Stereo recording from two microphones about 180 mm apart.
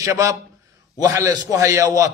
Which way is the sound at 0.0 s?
20° right (ahead or behind).